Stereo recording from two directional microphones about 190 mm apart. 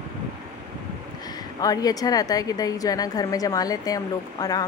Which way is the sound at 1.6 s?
20° left (ahead or behind).